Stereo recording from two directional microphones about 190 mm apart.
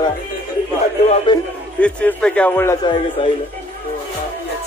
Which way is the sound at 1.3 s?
25° left (ahead or behind).